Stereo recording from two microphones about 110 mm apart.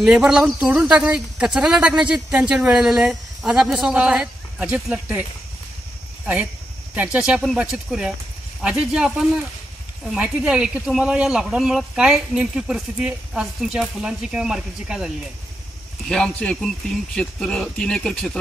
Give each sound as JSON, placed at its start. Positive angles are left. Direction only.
{"t": 0.0, "sound": "speech", "side_deg": -5}
{"t": 7.0, "sound": "speech", "side_deg": -10}
{"t": 16.1, "sound": "speech", "side_deg": 5}